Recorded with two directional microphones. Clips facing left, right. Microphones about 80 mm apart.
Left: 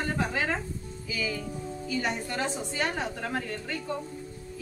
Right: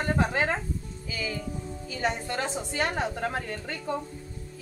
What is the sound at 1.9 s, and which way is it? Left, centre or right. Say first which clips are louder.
Speech: right 1 dB; right.